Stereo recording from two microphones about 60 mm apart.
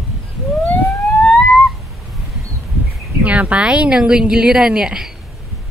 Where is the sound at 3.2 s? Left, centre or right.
Right.